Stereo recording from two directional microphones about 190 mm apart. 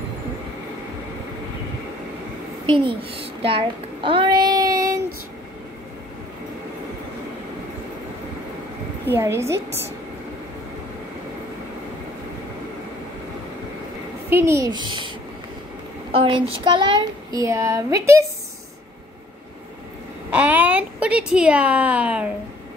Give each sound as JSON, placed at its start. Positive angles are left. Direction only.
{"t": 2.6, "sound": "a child's voice", "side_deg": -25}
{"t": 9.1, "sound": "a woman's voice", "side_deg": -15}
{"t": 14.3, "sound": "a child's voice", "side_deg": -15}
{"t": 20.2, "sound": "a woman's voice", "side_deg": -10}